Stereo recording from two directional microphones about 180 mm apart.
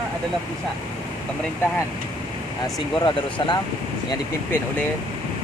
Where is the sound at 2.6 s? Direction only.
25° left (ahead or behind).